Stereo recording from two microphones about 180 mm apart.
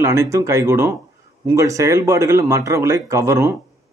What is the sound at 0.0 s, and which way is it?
Speech, 15° right (ahead or behind).